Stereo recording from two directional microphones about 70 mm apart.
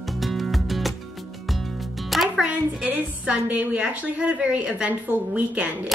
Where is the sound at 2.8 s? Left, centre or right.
Centre.